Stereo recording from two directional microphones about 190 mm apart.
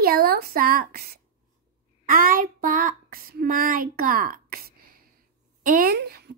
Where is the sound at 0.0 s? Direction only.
50° right (ahead or behind).